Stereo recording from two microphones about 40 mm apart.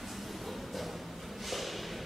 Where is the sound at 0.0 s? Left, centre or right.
Centre.